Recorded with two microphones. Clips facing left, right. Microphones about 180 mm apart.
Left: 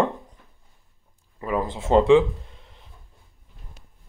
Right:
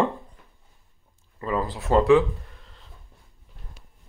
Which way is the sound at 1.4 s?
15° left (ahead or behind).